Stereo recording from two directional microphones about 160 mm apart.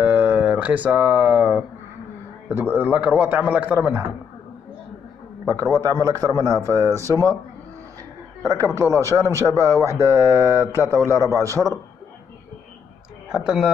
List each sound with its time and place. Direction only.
0.0 s a sound: 10° right (ahead or behind)
2.5 s a man's voice: 10° right (ahead or behind)
5.5 s speech: 20° right (ahead or behind)
8.5 s a man's voice: 20° right (ahead or behind)
13.3 s speech: 5° right (ahead or behind)